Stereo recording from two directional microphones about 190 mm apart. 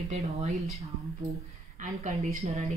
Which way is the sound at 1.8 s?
40° right (ahead or behind).